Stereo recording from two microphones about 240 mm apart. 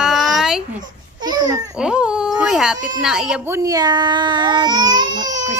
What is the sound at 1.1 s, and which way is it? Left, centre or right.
Speech, centre.